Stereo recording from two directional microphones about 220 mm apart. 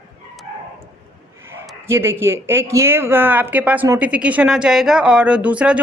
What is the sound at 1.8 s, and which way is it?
A woman's voice, 10° right (ahead or behind).